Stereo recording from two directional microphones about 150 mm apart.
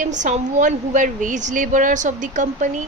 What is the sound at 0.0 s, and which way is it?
A woman's voice, 55° right (ahead or behind).